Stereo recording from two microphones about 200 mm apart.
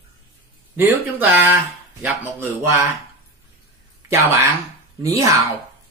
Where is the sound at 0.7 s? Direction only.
10° right (ahead or behind).